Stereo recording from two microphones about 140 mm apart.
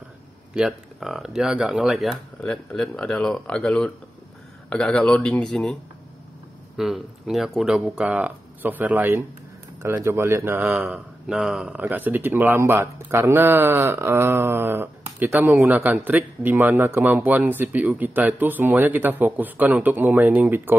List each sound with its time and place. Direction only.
0.6 s speech: centre (ahead or behind)
6.8 s speech: centre (ahead or behind)